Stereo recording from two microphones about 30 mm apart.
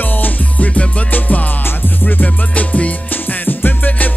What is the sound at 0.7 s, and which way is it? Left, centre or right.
Music, left.